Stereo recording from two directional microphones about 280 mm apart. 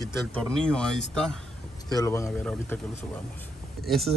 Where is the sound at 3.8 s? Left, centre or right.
Centre.